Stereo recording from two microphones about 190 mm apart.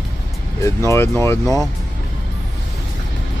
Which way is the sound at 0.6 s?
15° left (ahead or behind).